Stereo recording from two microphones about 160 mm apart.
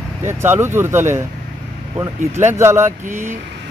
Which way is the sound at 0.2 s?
15° right (ahead or behind).